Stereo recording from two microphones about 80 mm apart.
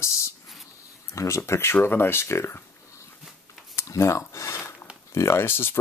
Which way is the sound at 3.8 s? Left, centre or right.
Left.